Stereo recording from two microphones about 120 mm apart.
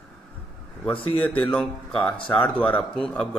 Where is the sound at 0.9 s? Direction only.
50° left (ahead or behind).